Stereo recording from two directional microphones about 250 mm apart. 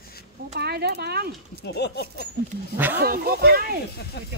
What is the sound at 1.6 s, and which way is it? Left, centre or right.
Speech, left.